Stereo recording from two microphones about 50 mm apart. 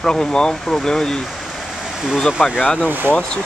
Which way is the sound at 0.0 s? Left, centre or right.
Centre.